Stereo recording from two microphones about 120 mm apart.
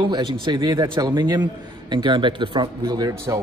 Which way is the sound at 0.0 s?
40° right (ahead or behind).